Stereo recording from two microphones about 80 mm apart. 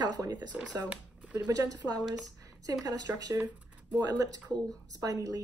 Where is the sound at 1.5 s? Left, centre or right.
Right.